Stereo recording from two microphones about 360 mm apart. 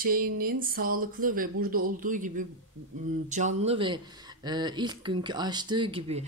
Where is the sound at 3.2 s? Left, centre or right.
Centre.